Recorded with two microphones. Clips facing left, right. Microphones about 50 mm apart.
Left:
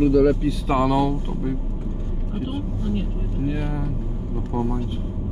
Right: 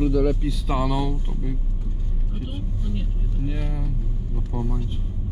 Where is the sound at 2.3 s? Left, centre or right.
Centre.